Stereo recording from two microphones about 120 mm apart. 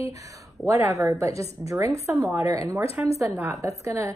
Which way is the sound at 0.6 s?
Centre (ahead or behind).